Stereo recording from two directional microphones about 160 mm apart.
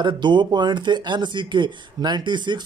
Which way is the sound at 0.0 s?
30° right (ahead or behind).